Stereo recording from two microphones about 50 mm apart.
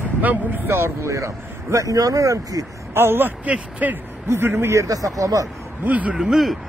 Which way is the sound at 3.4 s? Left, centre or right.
Right.